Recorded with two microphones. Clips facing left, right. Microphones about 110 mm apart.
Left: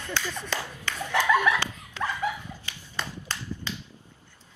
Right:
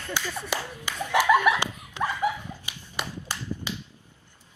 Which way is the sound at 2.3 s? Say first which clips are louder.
Right 3 dB; 15° right (ahead or behind).